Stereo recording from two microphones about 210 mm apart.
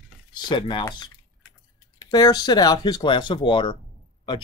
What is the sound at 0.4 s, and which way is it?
Speech, 20° left (ahead or behind).